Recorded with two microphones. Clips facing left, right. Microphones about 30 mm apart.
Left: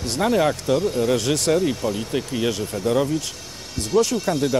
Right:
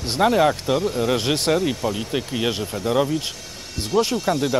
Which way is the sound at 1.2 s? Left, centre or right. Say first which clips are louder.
Even; right.